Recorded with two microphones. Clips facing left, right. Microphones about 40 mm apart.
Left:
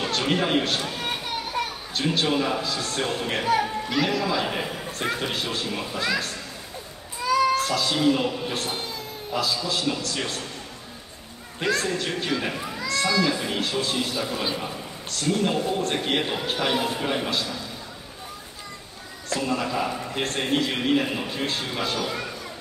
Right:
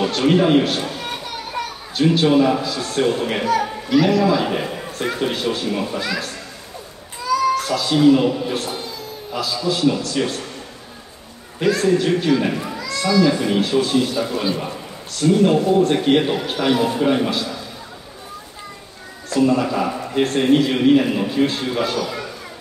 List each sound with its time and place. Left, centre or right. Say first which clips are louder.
0.0 s a man's voice: right 8 dB; centre
7.5 s a man's voice: right 4 dB; centre
11.6 s a man's voice: right 8 dB; centre
12.7 s sheep: right 4 dB; centre
13.3 s a man's voice: right 8 dB; centre
19.2 s a man's voice: right 9 dB; centre